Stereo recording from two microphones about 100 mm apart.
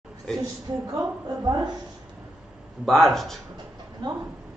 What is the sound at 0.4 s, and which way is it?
A woman's voice, 35° right (ahead or behind).